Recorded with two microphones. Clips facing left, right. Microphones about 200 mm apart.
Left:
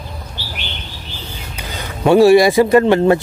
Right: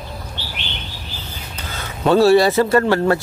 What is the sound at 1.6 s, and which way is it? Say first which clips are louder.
Speech: left 3 dB; 15° left (ahead or behind).